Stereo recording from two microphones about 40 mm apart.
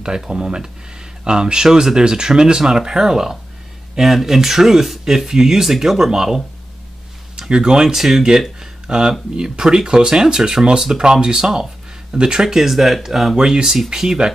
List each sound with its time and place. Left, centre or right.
0.0 s speech: centre
12.4 s speech: centre
13.4 s speech: centre